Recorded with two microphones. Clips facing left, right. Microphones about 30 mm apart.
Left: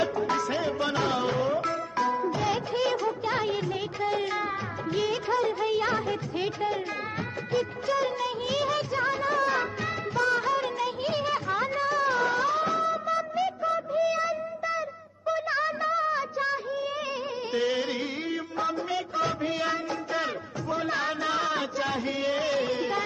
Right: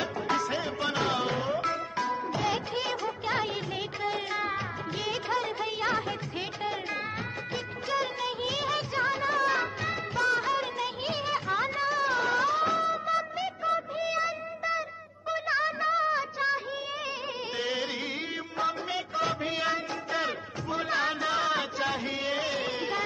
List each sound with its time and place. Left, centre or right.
0.4 s music: centre
4.9 s music of bollywood: centre
13.1 s music: centre
13.7 s music of bollywood: right
14.6 s music: centre
17.6 s music: centre
19.1 s music: centre